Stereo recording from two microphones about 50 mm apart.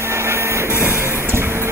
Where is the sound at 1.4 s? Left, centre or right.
Right.